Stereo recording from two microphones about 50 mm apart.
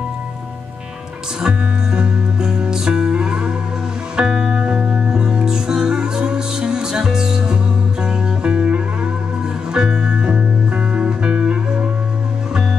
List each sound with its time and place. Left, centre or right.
1.4 s music: centre